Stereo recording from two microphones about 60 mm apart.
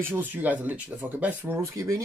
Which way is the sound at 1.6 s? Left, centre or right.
Right.